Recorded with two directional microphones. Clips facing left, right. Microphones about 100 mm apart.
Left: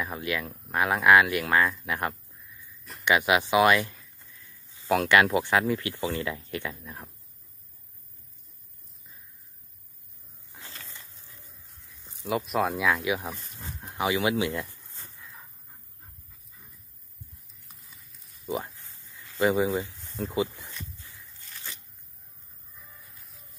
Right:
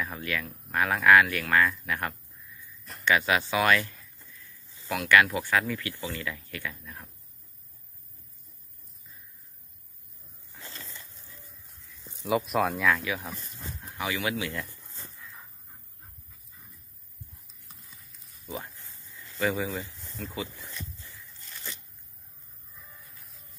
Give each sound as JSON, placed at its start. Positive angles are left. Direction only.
{"t": 0.0, "sound": "speech", "side_deg": 15}
{"t": 2.8, "sound": "a sound", "side_deg": 0}
{"t": 3.1, "sound": "speech", "side_deg": 15}
{"t": 5.0, "sound": "speech", "side_deg": 25}
{"t": 12.3, "sound": "speech", "side_deg": 0}
{"t": 12.9, "sound": "speech", "side_deg": 20}
{"t": 17.6, "sound": "clip-clop", "side_deg": 0}
{"t": 19.6, "sound": "speech", "side_deg": 25}